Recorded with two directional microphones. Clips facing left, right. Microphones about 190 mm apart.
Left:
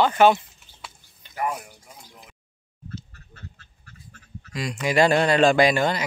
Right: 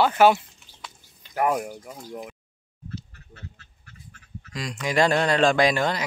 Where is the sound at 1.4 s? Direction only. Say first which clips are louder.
Right 5 dB; 60° right (ahead or behind).